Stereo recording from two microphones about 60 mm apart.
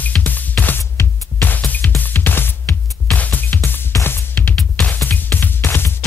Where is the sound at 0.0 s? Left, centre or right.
Left.